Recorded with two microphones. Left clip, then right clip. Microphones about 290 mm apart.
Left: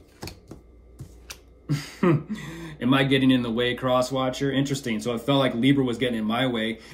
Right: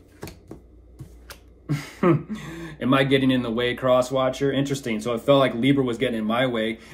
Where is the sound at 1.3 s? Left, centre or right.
Centre.